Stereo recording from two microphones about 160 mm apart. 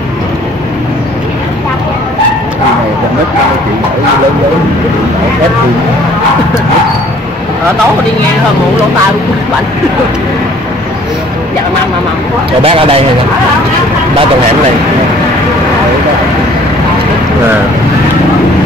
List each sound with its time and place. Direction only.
12.6 s speech: 35° right (ahead or behind)